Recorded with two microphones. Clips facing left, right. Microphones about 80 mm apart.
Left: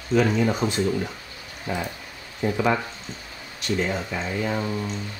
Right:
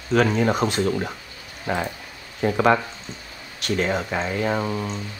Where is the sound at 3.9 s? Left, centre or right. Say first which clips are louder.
Right 4 dB; right.